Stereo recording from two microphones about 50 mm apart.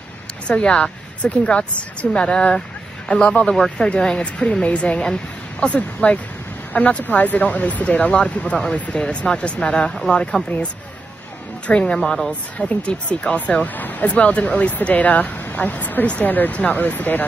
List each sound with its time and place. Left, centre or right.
0.5 s speech: left
6.0 s speech: left
10.5 s speech: left
11.6 s speech: left
12.0 s speech: centre
12.3 s speech: left